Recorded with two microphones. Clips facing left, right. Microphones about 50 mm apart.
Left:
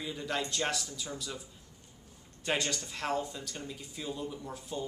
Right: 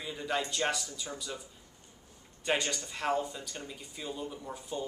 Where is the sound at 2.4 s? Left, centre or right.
Centre.